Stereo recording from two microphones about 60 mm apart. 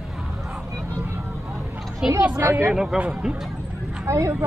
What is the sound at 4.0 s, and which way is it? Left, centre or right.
Speech, right.